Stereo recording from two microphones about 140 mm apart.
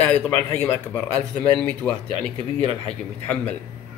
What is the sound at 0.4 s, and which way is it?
Speech, 15° left (ahead or behind).